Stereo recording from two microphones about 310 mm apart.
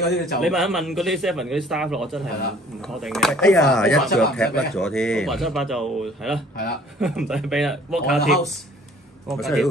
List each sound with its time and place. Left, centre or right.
0.4 s speech: centre